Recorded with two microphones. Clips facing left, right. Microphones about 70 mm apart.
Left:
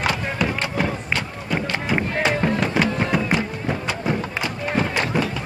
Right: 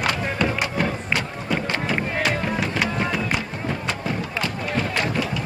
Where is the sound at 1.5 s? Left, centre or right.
Centre.